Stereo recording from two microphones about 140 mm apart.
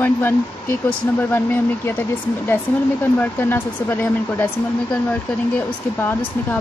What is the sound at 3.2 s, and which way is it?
Speech, 15° left (ahead or behind).